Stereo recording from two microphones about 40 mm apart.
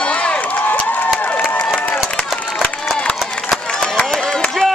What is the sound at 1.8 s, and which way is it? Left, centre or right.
Run, left.